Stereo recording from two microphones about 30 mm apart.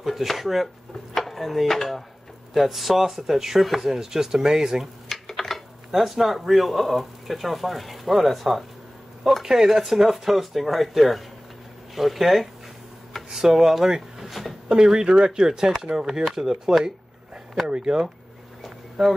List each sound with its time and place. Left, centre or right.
0.0 s chopping: centre
0.4 s speech: centre
1.1 s a sound: centre
1.8 s speech: centre
5.1 s speech: centre
9.4 s speech: centre
13.3 s speech: centre
14.7 s speech: right
17.6 s speech: right
18.6 s a sound: centre